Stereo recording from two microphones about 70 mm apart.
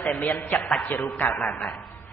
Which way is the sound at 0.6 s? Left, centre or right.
Centre.